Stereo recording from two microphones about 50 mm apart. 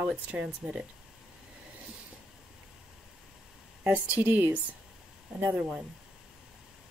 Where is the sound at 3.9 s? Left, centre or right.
Right.